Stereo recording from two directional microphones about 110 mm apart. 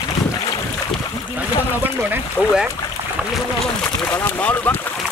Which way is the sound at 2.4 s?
10° right (ahead or behind).